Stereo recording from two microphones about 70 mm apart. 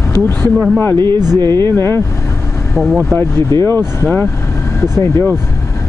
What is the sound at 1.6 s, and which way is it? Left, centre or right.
Speech, left.